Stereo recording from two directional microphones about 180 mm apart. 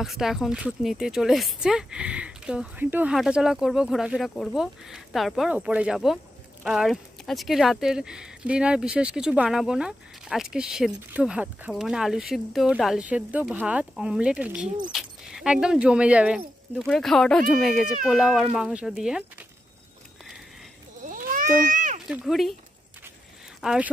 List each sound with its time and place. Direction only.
0.0 s speech: centre (ahead or behind)
21.0 s a sound: 50° right (ahead or behind)
22.0 s speech: centre (ahead or behind)
23.6 s speech: 5° right (ahead or behind)